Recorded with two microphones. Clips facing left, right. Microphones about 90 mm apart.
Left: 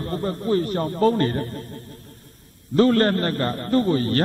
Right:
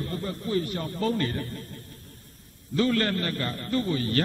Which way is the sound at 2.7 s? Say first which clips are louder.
Left 7 dB; 40° left (ahead or behind).